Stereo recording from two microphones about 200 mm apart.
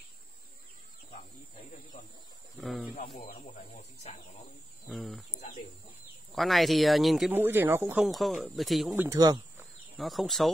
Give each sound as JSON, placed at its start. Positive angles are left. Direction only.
{"t": 2.6, "sound": "speech", "side_deg": 0}
{"t": 3.2, "sound": "speech", "side_deg": 40}
{"t": 4.8, "sound": "speech", "side_deg": 0}
{"t": 6.3, "sound": "speech", "side_deg": 0}
{"t": 8.9, "sound": "speech", "side_deg": -15}
{"t": 9.9, "sound": "speech", "side_deg": 0}